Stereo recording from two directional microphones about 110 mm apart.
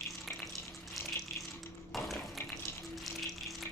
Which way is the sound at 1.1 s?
20° left (ahead or behind).